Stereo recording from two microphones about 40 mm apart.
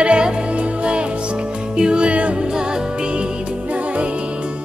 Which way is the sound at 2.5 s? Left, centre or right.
Centre.